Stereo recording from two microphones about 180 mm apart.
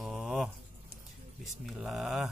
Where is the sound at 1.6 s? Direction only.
Centre (ahead or behind).